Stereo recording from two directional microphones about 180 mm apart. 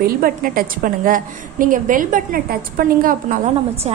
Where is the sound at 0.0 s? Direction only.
55° right (ahead or behind).